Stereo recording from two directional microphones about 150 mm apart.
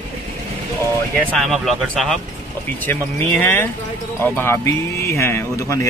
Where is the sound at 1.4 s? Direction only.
Centre (ahead or behind).